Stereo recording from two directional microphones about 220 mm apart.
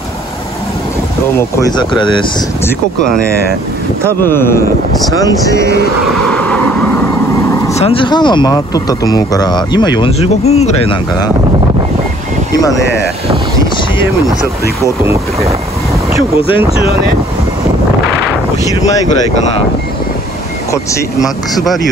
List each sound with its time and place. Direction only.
1.6 s speech: 20° left (ahead or behind)
4.2 s speech: 10° left (ahead or behind)
6.2 s vehicle: 5° left (ahead or behind)
7.7 s speech: 25° left (ahead or behind)
20.7 s speech: 15° left (ahead or behind)